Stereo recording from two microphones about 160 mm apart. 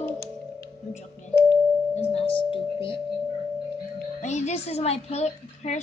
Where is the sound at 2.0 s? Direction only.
35° left (ahead or behind).